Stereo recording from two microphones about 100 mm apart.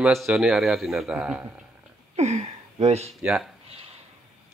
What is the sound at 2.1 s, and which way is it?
Speech, 90° right.